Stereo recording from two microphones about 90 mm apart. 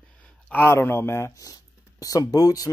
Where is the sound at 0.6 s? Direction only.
30° left (ahead or behind).